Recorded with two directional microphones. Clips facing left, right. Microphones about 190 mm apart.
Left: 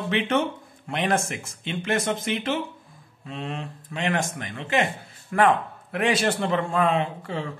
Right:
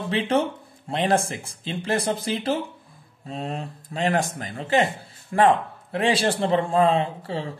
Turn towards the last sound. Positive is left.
turn(degrees=-30)  # may be behind; listen again after turning